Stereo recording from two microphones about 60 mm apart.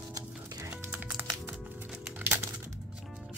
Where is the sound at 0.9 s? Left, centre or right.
Right.